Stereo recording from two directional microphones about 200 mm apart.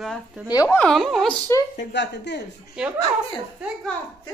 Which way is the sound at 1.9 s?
60° left (ahead or behind).